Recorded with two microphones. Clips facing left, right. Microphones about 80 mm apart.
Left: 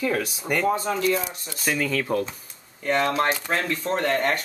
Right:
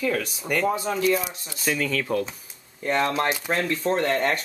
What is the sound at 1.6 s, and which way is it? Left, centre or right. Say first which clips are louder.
Speech: even; centre.